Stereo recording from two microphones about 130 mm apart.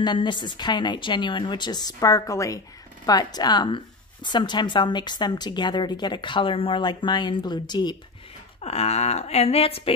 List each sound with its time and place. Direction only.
0.0 s speech: 35° left (ahead or behind)
8.5 s speech: 50° left (ahead or behind)